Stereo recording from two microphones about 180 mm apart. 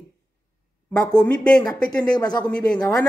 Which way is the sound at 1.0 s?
5° left (ahead or behind).